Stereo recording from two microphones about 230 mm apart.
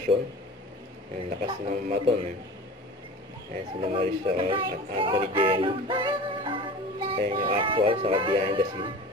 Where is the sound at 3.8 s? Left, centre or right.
Right.